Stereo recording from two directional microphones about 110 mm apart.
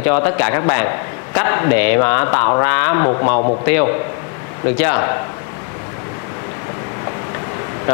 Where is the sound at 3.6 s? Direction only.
20° left (ahead or behind).